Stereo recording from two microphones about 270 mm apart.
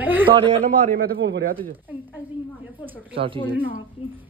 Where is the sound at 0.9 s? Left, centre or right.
Right.